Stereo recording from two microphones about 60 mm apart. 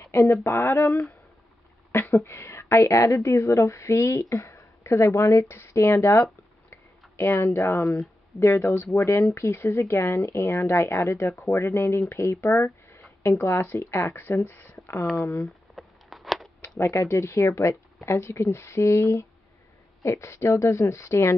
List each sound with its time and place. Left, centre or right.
0.0 s speech: left
2.0 s speech: left
7.2 s speech: left
14.7 s a sound: left
15.4 s a sound: centre
16.6 s speech: left